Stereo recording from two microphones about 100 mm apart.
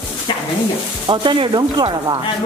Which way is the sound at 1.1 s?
55° right (ahead or behind).